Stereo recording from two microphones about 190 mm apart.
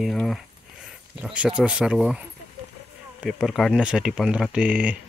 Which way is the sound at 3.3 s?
Centre (ahead or behind).